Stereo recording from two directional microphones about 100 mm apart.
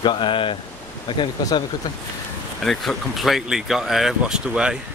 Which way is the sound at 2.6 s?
Centre (ahead or behind).